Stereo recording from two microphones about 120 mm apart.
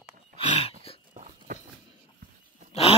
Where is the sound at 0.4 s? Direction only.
55° left (ahead or behind).